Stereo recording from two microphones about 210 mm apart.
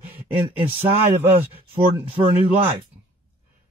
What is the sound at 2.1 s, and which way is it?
Speech, 25° right (ahead or behind).